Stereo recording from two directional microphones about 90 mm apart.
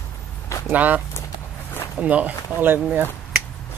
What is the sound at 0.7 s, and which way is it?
Speech, 20° right (ahead or behind).